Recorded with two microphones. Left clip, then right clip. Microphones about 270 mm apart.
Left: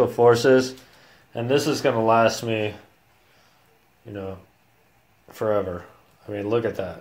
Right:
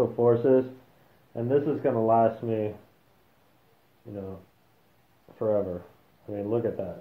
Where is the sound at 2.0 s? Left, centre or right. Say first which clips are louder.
Left 3 dB; left.